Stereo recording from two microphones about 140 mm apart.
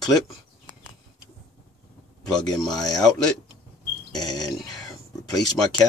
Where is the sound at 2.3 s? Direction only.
5° left (ahead or behind).